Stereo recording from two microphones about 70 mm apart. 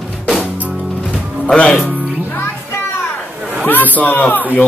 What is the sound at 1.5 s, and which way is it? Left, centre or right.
Speech, centre.